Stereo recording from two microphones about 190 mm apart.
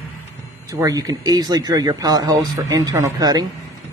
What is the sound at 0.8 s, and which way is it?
Speech, 20° right (ahead or behind).